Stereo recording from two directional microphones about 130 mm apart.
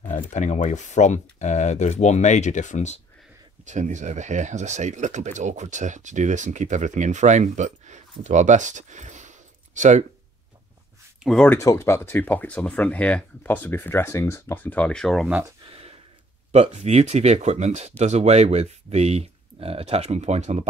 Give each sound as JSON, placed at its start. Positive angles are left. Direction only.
{"t": 0.1, "sound": "speech", "side_deg": 75}
{"t": 3.6, "sound": "speech", "side_deg": -70}
{"t": 11.2, "sound": "speech", "side_deg": 5}
{"t": 11.5, "sound": "speech", "side_deg": 20}
{"t": 15.6, "sound": "a sound", "side_deg": -45}
{"t": 16.5, "sound": "speech", "side_deg": -55}